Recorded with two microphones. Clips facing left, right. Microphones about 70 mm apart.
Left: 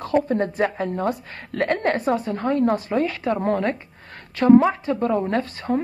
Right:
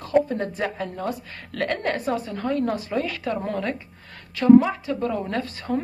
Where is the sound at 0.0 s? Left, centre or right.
Left.